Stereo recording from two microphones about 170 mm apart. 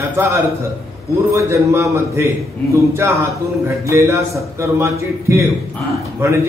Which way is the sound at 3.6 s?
15° right (ahead or behind).